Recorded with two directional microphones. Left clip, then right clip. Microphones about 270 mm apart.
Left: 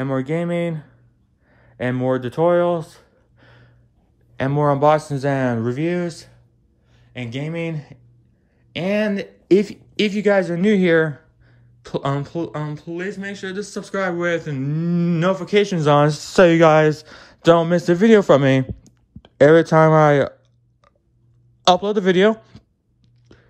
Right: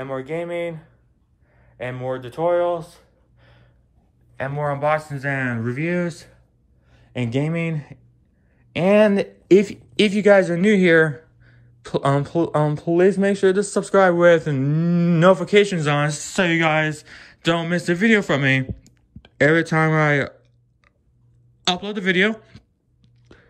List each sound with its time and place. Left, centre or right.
0.0 s speech: left
1.5 s a sound: left
4.6 s speech: centre
21.6 s a man's voice: centre